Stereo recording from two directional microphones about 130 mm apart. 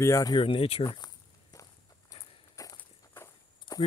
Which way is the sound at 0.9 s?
30° left (ahead or behind).